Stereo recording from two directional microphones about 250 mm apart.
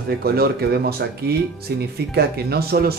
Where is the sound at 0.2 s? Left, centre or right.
Right.